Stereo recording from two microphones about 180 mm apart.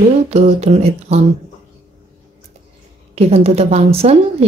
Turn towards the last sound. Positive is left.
turn(degrees=-35)  # may be behind; listen again after turning